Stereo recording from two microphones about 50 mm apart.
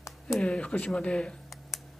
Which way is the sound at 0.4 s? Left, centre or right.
Left.